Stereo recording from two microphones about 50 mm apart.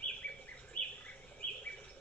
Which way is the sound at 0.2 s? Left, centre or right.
Left.